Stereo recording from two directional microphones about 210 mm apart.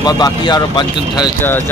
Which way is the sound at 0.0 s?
20° left (ahead or behind).